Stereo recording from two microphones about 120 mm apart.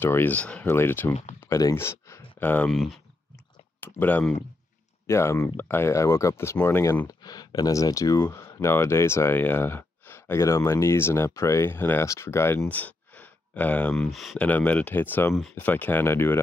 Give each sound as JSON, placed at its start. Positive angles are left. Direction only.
{"t": 0.0, "sound": "speech", "side_deg": 15}
{"t": 1.4, "sound": "a sound", "side_deg": 30}
{"t": 2.7, "sound": "speech", "side_deg": 0}
{"t": 4.0, "sound": "speech", "side_deg": 15}
{"t": 13.9, "sound": "speech", "side_deg": 0}
{"t": 14.4, "sound": "speech", "side_deg": 15}